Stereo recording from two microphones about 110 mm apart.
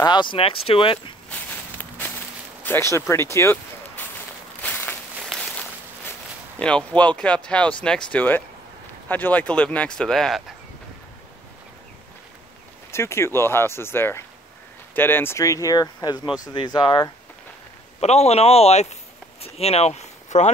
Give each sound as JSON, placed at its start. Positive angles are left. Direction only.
{"t": 0.0, "sound": "speech", "side_deg": 45}
{"t": 1.3, "sound": "walk", "side_deg": 15}
{"t": 2.6, "sound": "speech", "side_deg": 20}
{"t": 4.6, "sound": "walk", "side_deg": 15}
{"t": 5.3, "sound": "a sound", "side_deg": 5}
{"t": 6.6, "sound": "speech", "side_deg": 10}
{"t": 12.9, "sound": "speech", "side_deg": 25}
{"t": 18.0, "sound": "speech", "side_deg": 80}
{"t": 19.4, "sound": "speech", "side_deg": 65}